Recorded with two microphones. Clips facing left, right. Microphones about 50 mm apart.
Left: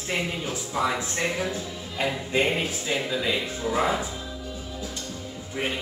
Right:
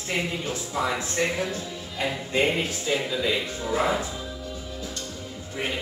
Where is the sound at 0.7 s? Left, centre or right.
Centre.